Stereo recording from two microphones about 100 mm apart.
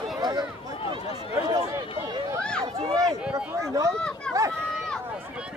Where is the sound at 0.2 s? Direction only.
45° right (ahead or behind).